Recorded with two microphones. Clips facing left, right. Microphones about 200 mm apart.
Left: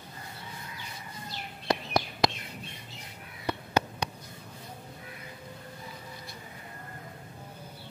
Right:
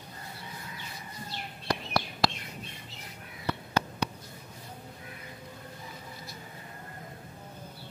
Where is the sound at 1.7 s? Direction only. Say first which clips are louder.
Left 2 dB; 20° left (ahead or behind).